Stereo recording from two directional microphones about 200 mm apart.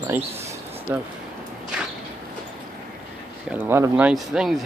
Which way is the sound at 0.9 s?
10° right (ahead or behind).